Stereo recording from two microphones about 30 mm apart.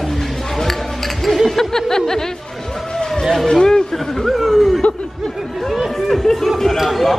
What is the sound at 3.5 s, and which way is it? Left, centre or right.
Speech, centre.